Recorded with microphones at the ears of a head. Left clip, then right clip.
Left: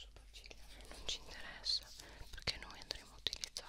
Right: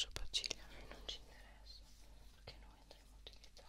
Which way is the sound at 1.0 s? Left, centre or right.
Left.